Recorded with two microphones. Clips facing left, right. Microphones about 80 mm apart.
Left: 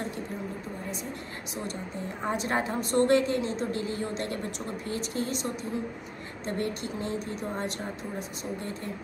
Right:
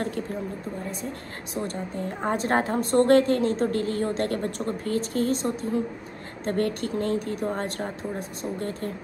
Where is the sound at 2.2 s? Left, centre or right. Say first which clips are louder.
Right 5 dB; right.